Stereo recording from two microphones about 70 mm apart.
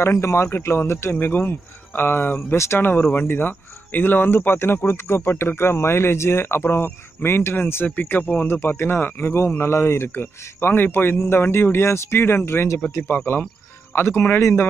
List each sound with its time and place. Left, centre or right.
0.0 s speech: left
1.2 s speech: left
8.5 s speech: left